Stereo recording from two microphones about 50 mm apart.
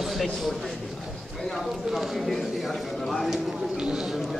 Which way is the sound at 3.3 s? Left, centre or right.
Centre.